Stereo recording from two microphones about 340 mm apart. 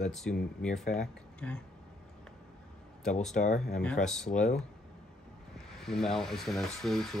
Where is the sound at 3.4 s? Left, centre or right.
Left.